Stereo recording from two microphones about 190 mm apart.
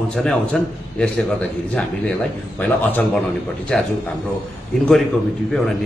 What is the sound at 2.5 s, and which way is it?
A man's voice, 10° left (ahead or behind).